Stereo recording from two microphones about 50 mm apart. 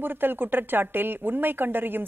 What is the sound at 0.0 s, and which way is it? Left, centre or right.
Speech, right.